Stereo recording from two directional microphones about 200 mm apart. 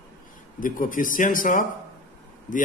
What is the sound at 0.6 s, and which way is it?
A man's voice, 45° left (ahead or behind).